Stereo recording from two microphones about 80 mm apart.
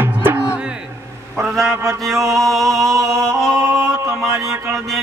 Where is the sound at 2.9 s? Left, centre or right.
Right.